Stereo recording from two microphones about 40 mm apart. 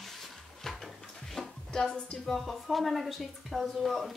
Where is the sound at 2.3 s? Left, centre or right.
Centre.